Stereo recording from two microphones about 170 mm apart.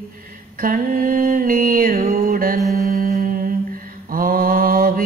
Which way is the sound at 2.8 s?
55° right (ahead or behind).